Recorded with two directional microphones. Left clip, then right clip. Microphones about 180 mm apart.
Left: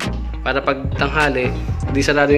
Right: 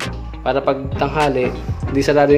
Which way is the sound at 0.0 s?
5° right (ahead or behind).